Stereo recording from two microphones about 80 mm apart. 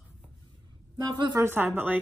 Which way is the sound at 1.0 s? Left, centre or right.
Right.